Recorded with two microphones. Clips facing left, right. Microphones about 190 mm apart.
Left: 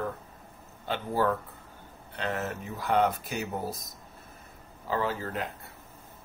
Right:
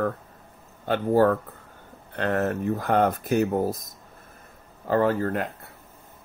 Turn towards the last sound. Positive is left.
turn(degrees=-55)  # may be behind; listen again after turning